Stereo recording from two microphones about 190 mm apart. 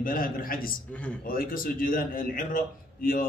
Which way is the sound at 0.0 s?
50° left (ahead or behind).